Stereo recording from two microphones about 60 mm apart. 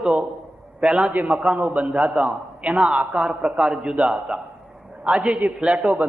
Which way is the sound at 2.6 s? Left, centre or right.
Centre.